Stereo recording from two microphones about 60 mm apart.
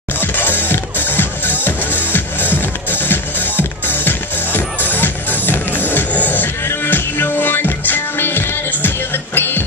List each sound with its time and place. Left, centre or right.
0.2 s music: left
6.6 s music: left